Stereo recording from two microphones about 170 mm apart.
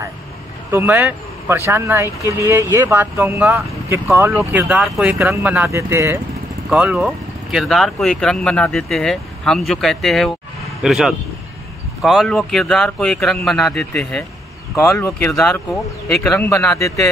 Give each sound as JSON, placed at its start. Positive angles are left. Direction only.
{"t": 0.7, "sound": "speech", "side_deg": -15}
{"t": 4.5, "sound": "speech", "side_deg": -5}
{"t": 6.7, "sound": "speech", "side_deg": -5}
{"t": 14.8, "sound": "speech", "side_deg": 15}